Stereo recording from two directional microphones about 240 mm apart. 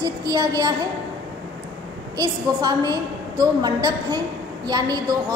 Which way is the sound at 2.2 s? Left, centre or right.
Centre.